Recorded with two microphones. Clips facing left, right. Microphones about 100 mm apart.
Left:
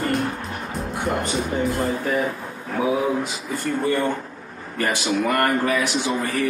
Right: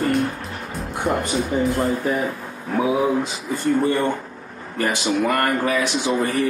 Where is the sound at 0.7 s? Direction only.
Centre (ahead or behind).